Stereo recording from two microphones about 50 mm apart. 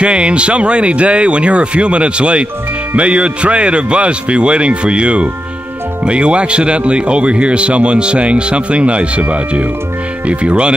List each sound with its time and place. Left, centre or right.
0.0 s speech: right